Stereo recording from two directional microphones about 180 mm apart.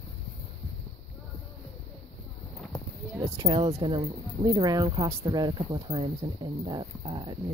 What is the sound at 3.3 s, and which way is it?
Speech, 30° right (ahead or behind).